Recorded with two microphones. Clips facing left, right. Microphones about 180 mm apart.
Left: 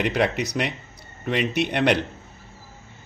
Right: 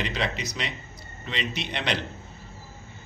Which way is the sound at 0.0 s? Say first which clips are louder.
Left 7 dB; 60° left (ahead or behind).